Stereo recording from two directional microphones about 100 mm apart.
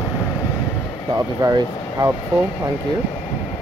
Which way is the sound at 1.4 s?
35° right (ahead or behind).